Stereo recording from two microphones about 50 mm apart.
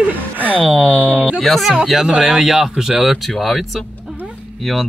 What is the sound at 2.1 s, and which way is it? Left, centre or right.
Speech, centre.